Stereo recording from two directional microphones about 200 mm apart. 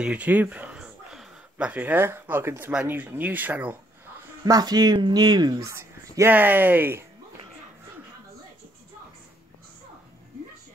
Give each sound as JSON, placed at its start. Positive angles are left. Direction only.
{"t": 0.0, "sound": "speech", "side_deg": -5}
{"t": 4.5, "sound": "speech", "side_deg": -20}